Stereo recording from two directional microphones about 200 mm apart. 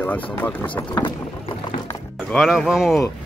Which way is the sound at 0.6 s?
25° left (ahead or behind).